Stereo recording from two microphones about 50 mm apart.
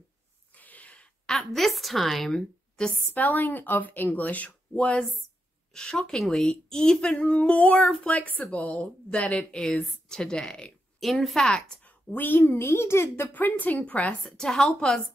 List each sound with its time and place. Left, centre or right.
0.6 s a sound: left
1.3 s a woman's voice: centre
3.2 s speech: left
4.7 s a woman's voice: left
8.2 s a woman's voice: left; by 10.7 s centre
11.0 s a woman's voice: centre
12.1 s a child's voice: left
13.3 s speech: left
14.3 s a woman's voice: centre